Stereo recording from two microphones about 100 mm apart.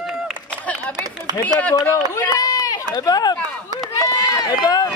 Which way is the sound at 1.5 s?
15° left (ahead or behind).